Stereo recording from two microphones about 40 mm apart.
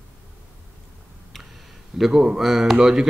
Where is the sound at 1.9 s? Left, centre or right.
Centre.